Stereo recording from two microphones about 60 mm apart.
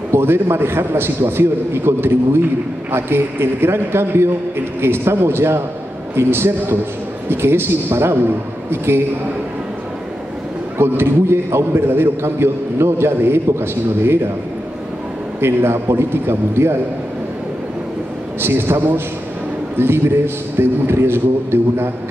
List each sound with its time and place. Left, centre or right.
0.1 s a man's voice: right
10.8 s a man's voice: right
15.4 s a man's voice: right
18.4 s a man's voice: right
19.8 s a man's voice: right